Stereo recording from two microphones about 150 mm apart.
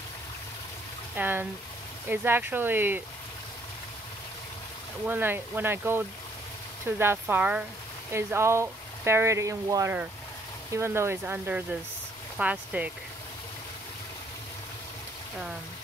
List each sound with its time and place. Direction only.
1.1 s speech: 10° right (ahead or behind)
5.0 s speech: 15° right (ahead or behind)